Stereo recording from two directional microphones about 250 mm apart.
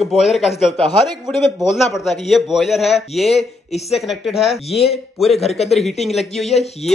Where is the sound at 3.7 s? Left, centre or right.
Left.